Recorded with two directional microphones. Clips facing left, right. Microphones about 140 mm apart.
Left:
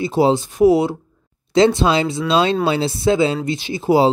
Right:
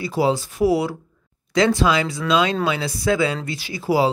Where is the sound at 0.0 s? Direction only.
25° left (ahead or behind).